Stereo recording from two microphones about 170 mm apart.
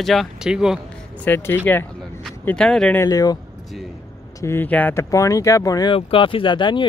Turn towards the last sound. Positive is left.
turn(degrees=25)  # may be behind; listen again after turning